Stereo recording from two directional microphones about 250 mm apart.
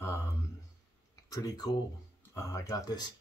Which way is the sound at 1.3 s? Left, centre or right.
Centre.